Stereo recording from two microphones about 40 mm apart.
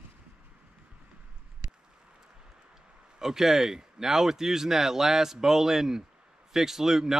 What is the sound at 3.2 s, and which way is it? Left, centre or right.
Speech, centre.